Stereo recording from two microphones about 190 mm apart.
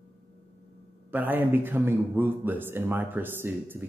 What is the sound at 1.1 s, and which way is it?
A man's voice, 10° right (ahead or behind).